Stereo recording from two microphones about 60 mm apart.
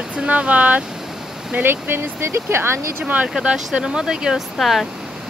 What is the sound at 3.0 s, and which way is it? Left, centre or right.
Speech, right.